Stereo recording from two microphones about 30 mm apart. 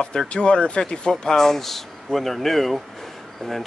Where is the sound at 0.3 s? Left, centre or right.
Left.